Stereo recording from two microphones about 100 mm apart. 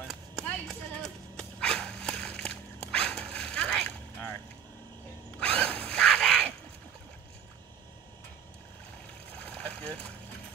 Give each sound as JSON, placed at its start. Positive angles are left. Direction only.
{"t": 0.1, "sound": "a sound", "side_deg": 0}
{"t": 5.4, "sound": "zipper", "side_deg": 10}
{"t": 9.6, "sound": "boat", "side_deg": 15}